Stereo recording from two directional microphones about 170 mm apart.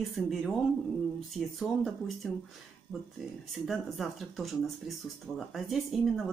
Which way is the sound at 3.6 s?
Centre (ahead or behind).